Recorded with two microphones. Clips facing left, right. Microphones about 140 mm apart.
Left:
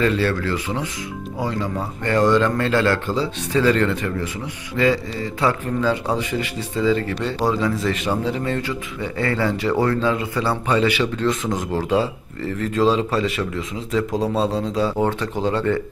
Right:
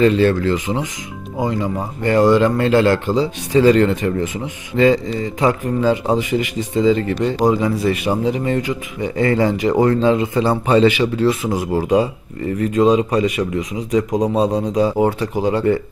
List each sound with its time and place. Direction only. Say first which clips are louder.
0.0 s a man's voice: right 6 dB; 20° right (ahead or behind)
11.0 s a man's voice: right 4 dB; 10° right (ahead or behind)